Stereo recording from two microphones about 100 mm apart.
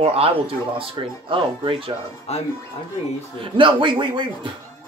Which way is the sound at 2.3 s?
90° left.